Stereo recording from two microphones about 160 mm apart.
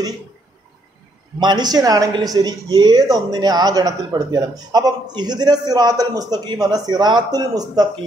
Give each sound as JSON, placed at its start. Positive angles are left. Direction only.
{"t": 1.4, "sound": "a man's voice", "side_deg": -25}